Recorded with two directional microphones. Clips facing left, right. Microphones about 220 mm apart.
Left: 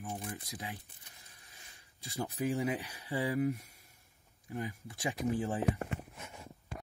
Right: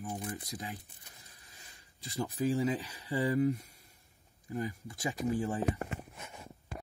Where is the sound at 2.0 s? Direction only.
15° left (ahead or behind).